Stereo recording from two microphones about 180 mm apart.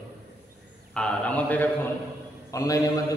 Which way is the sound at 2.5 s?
20° left (ahead or behind).